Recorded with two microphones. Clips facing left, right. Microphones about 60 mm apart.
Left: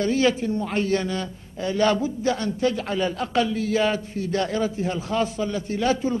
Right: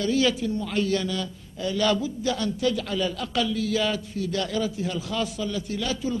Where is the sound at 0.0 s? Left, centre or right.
Left.